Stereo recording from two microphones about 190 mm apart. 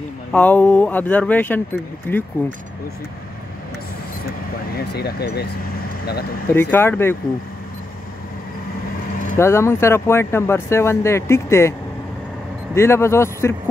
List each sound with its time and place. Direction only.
0.3 s speech: 10° left (ahead or behind)
4.3 s speech: 55° left (ahead or behind)
6.5 s speech: 10° left (ahead or behind)
9.4 s speech: 15° left (ahead or behind)
12.7 s speech: 15° left (ahead or behind)